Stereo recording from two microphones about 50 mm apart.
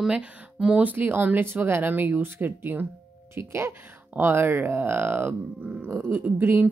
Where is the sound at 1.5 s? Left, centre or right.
Right.